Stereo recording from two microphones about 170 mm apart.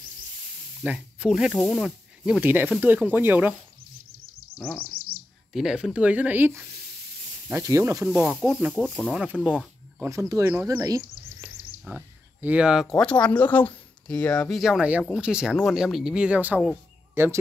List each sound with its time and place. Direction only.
0.8 s speech: 5° right (ahead or behind)
5.5 s speech: 5° right (ahead or behind)
10.0 s speech: 20° right (ahead or behind)
10.8 s a sound: 20° right (ahead or behind)
11.8 s speech: 10° right (ahead or behind)
13.0 s speech: 5° left (ahead or behind); by 17.4 s 15° right (ahead or behind)